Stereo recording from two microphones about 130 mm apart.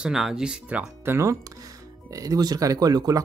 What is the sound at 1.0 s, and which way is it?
Speech, 20° right (ahead or behind).